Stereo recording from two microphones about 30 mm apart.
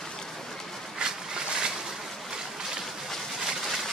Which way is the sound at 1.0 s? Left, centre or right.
Right.